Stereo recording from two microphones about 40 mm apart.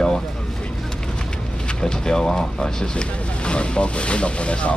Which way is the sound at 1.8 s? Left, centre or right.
Centre.